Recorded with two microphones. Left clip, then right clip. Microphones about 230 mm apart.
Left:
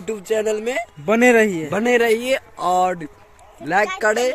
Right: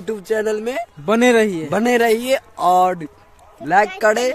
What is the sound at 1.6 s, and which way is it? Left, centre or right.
Speech, right.